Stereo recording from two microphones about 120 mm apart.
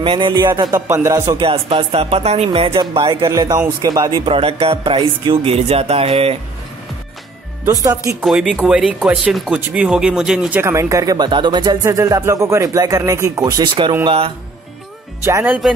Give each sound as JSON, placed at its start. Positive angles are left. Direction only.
{"t": 0.0, "sound": "speech", "side_deg": -45}
{"t": 0.8, "sound": "speech", "side_deg": -25}
{"t": 1.4, "sound": "speech", "side_deg": -50}
{"t": 3.2, "sound": "speech", "side_deg": -30}
{"t": 4.1, "sound": "speech", "side_deg": -50}
{"t": 7.6, "sound": "speech", "side_deg": -30}
{"t": 8.2, "sound": "speech", "side_deg": 0}
{"t": 10.6, "sound": "speech", "side_deg": -25}
{"t": 14.0, "sound": "speech", "side_deg": -50}
{"t": 15.2, "sound": "speech", "side_deg": -20}